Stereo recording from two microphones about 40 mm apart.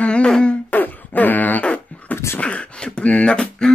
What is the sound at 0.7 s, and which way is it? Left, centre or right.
Beatboxing, left.